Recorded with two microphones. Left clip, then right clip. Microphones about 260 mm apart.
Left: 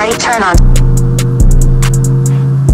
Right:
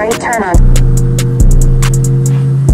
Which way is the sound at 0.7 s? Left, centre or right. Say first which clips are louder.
Even; centre.